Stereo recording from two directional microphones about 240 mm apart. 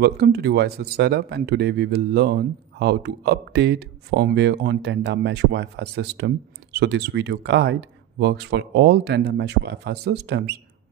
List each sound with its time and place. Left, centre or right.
0.0 s speech: right